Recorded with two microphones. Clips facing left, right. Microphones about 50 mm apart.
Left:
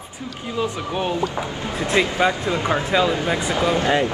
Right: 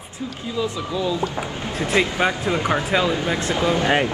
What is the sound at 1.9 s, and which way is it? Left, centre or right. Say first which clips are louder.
Speech: left 1 dB; right.